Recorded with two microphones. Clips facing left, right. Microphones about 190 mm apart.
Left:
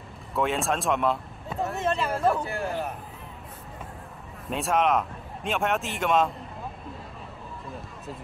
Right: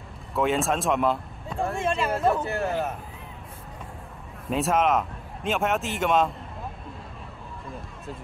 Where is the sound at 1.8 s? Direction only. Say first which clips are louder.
Even; 10° right (ahead or behind).